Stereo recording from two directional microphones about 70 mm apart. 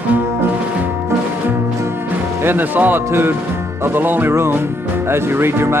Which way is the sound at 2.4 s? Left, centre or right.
Right.